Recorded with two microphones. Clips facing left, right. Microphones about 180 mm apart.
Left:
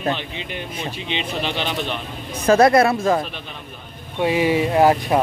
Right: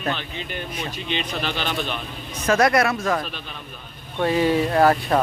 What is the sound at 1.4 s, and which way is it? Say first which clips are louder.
Speech: left 2 dB; 20° left (ahead or behind).